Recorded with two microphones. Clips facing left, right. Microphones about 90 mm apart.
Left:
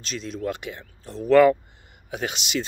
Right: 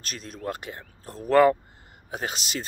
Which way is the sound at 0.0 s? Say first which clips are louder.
Left 5 dB; 45° right (ahead or behind).